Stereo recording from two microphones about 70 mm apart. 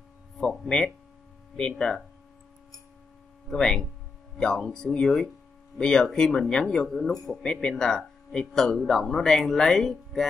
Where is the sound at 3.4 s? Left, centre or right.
Centre.